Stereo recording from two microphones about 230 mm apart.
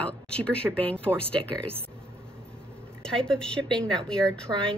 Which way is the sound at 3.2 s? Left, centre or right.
Centre.